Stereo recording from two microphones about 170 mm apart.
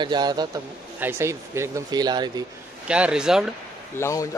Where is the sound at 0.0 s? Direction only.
25° right (ahead or behind).